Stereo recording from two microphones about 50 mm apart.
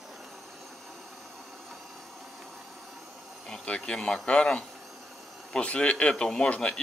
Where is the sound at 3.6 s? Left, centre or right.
Centre.